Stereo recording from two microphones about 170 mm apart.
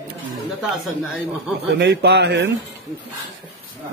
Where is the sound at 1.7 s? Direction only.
80° right.